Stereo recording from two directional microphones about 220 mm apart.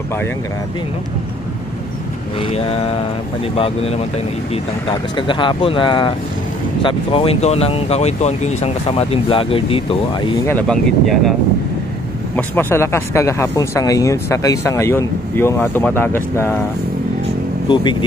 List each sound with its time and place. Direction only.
2.4 s speech: 25° left (ahead or behind)
5.1 s speech: 20° left (ahead or behind)
10.4 s speech: 5° left (ahead or behind)
12.4 s speech: 10° left (ahead or behind)